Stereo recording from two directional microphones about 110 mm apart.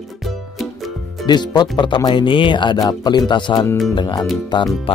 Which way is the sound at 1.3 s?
40° left (ahead or behind).